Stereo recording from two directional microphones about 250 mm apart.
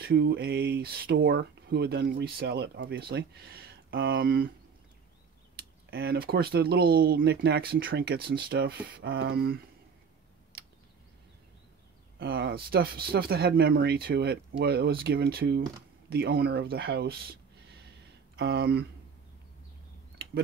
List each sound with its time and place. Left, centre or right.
0.0 s speech: right
5.6 s speech: right
10.5 s a sound: right
12.2 s speech: right
18.4 s speech: right